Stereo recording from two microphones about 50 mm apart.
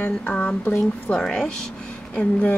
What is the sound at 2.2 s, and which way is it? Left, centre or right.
Speech, left.